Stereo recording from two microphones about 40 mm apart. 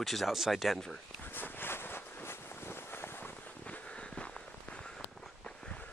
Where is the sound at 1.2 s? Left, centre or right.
Left.